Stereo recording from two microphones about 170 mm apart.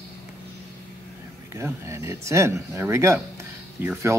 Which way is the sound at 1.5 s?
15° right (ahead or behind).